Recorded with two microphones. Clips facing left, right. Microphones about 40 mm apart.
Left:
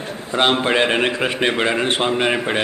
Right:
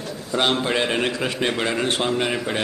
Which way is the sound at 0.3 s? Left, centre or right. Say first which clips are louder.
Left 4 dB; left.